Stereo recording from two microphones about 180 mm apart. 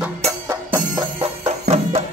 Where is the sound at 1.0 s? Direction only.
30° right (ahead or behind).